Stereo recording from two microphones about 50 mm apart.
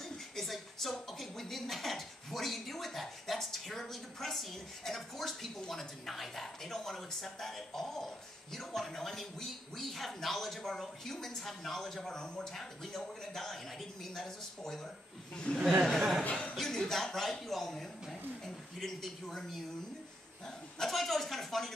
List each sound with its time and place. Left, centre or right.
0.0 s a woman's voice: centre
15.9 s a man's voice: centre
20.8 s a man's voice: centre